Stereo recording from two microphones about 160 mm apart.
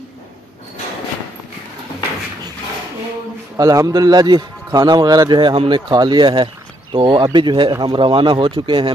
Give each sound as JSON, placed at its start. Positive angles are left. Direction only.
{"t": 3.5, "sound": "a man's voice", "side_deg": -20}